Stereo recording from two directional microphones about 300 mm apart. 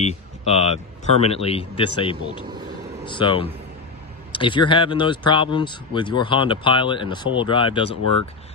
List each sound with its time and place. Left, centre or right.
0.0 s speech: centre